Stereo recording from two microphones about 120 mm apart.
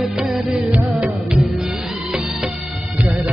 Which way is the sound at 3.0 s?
20° right (ahead or behind).